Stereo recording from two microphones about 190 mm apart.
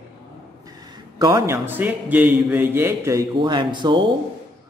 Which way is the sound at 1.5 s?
10° right (ahead or behind).